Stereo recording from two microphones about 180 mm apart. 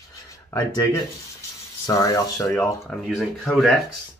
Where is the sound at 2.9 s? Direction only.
Centre (ahead or behind).